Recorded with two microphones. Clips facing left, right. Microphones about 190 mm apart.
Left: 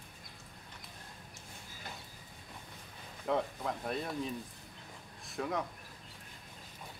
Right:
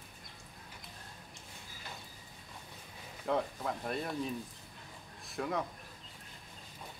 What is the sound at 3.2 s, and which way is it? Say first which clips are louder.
Speech: even; centre (ahead or behind).